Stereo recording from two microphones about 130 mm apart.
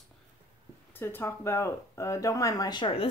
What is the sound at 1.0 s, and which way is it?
Speech, 15° left (ahead or behind).